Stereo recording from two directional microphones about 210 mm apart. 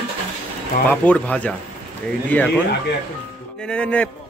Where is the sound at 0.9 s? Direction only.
5° left (ahead or behind).